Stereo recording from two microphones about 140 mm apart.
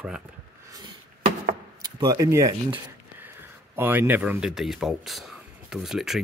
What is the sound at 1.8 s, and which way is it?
Speech, 30° right (ahead or behind).